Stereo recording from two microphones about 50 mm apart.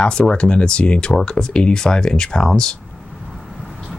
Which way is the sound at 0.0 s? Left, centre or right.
Left.